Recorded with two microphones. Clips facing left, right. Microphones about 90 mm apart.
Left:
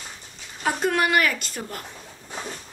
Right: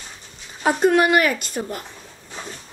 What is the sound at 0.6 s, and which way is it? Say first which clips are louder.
A woman's voice: right 6 dB; 25° right (ahead or behind).